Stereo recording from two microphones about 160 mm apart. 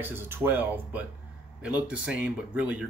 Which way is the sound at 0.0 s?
15° right (ahead or behind).